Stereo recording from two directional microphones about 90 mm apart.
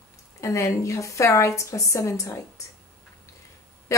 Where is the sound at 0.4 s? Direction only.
35° left (ahead or behind).